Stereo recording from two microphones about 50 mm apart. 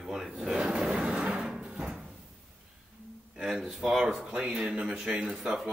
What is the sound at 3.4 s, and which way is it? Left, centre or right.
Speech, centre.